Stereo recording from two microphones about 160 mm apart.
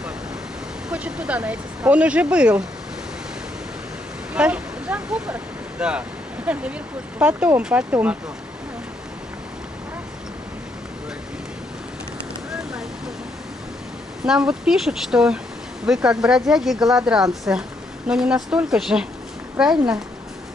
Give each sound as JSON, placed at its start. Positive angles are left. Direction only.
{"t": 0.8, "sound": "speech", "side_deg": -10}
{"t": 4.3, "sound": "speech", "side_deg": -5}
{"t": 14.2, "sound": "speech", "side_deg": -5}